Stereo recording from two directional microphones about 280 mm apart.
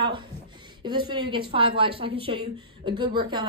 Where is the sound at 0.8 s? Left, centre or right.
Centre.